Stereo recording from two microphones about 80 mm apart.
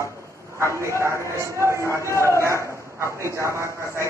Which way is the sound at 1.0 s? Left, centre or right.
Right.